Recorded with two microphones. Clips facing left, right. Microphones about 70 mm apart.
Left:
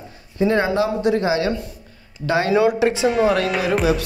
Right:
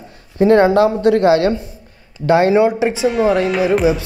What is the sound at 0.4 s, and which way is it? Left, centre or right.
Speech, right.